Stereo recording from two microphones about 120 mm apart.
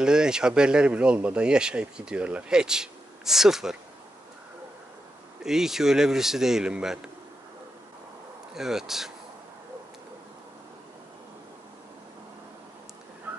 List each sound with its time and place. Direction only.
0.0 s speech: 5° right (ahead or behind)
5.4 s speech: 5° right (ahead or behind)
8.5 s speech: 5° right (ahead or behind)
13.3 s a sound: 15° right (ahead or behind)